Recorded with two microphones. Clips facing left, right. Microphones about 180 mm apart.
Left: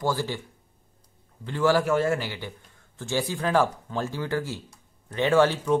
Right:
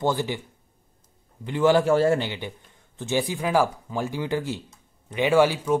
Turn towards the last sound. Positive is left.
turn(degrees=-10)  # may be behind; listen again after turning